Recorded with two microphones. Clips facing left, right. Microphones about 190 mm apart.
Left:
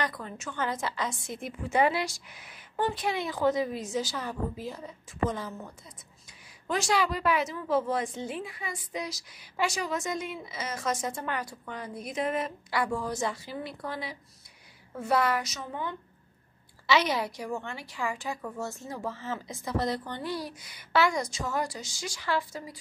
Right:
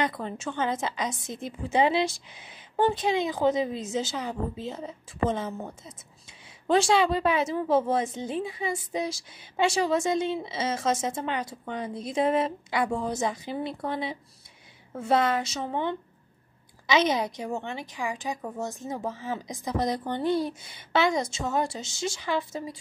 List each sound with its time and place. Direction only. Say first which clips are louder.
0.0 s a woman's voice: right 5 dB; 25° right (ahead or behind)
6.7 s a woman's voice: right 6 dB; 25° right (ahead or behind)